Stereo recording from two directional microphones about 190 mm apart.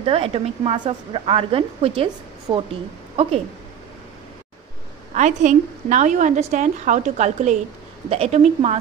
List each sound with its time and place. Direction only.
0.0 s a woman's voice: 30° right (ahead or behind)
5.1 s a woman's voice: 40° right (ahead or behind)